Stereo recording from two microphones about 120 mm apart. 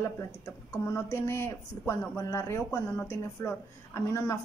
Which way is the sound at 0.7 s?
25° left (ahead or behind).